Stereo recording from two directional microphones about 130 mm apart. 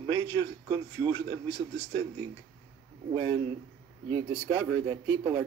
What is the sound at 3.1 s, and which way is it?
A man's voice, 40° right (ahead or behind).